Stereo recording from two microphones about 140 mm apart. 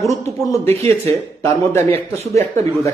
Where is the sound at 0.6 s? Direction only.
45° right (ahead or behind).